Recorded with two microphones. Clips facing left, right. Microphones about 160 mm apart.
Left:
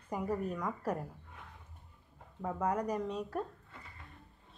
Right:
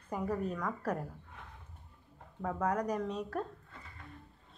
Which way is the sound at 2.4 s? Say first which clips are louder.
Right 1 dB; 10° left (ahead or behind).